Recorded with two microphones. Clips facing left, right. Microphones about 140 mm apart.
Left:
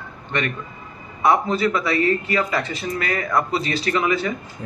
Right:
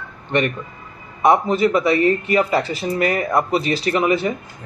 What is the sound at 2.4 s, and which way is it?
Speech, 35° right (ahead or behind).